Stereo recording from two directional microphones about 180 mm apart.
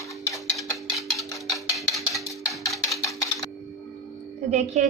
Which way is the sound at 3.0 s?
20° left (ahead or behind).